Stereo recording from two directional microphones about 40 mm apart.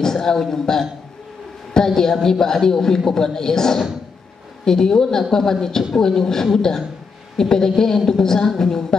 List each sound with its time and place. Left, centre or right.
0.0 s a man's voice: centre